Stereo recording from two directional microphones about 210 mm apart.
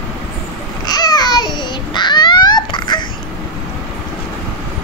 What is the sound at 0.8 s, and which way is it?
Babbling, 20° left (ahead or behind).